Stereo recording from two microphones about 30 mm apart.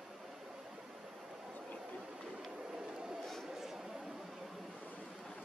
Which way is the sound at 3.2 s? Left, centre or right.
Centre.